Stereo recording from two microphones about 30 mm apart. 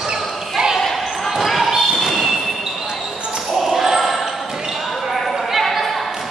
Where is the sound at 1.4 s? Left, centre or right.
Centre.